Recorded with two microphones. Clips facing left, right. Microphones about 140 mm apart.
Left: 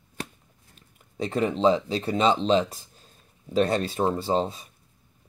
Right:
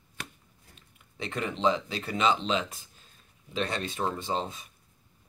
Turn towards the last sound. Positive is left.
turn(degrees=30)  # may be behind; listen again after turning